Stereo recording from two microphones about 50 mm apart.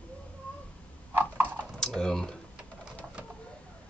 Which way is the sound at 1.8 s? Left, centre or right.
Centre.